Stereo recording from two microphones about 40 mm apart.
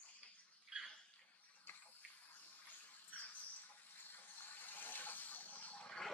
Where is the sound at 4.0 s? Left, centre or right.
Left.